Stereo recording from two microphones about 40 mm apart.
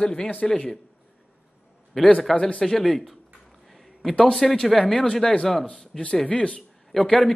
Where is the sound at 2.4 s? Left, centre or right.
Left.